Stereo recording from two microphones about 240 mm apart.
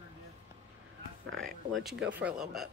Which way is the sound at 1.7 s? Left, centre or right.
Centre.